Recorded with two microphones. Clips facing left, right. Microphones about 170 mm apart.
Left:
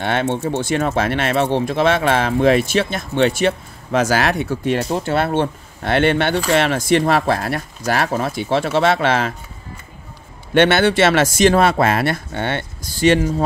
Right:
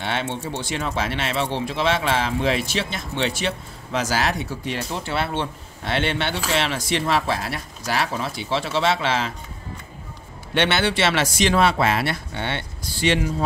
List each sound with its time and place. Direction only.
0.0 s speech: 50° left (ahead or behind)
10.5 s speech: 50° left (ahead or behind)